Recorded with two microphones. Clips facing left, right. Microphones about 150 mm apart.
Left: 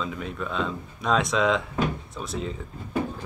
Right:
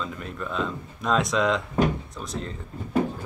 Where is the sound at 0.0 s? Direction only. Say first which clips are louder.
Left 2 dB; centre (ahead or behind).